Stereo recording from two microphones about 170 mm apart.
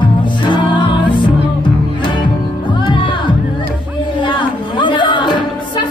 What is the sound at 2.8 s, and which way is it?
Music, 30° left (ahead or behind).